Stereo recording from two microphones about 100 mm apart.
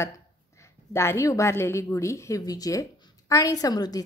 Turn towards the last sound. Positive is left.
turn(degrees=40)  # may be behind; listen again after turning